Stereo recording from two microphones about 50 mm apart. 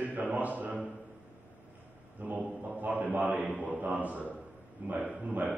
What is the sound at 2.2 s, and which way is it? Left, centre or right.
A man's voice, right.